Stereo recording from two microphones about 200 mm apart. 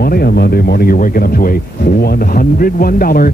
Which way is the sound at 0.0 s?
50° left (ahead or behind).